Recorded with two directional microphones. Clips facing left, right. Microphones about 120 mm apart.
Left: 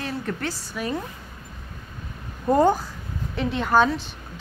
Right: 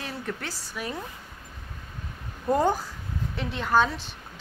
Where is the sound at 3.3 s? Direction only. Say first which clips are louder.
Left 4 dB; centre (ahead or behind).